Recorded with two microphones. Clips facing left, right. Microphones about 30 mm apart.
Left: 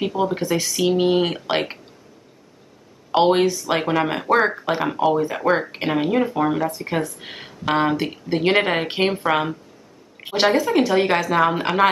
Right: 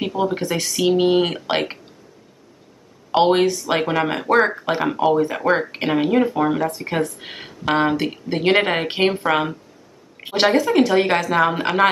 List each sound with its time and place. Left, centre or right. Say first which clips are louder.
0.0 s speech: even; centre
3.1 s speech: right 1 dB; centre